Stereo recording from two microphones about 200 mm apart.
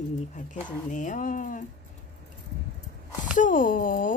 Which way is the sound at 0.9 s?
40° left (ahead or behind).